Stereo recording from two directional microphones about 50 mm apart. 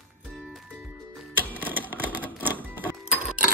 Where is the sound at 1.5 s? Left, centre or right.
Right.